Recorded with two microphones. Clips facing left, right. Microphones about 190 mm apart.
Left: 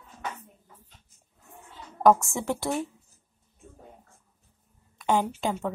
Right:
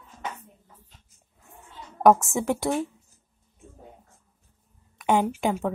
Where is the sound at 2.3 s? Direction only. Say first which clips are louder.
Right 4 dB; 20° right (ahead or behind).